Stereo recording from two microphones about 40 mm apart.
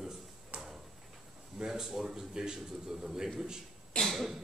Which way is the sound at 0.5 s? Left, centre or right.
Right.